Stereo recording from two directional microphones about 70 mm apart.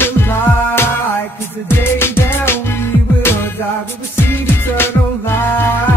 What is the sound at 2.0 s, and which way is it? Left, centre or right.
Music, left.